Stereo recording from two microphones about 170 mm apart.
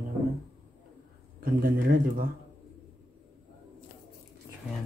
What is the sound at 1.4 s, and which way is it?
Speech, 55° right (ahead or behind).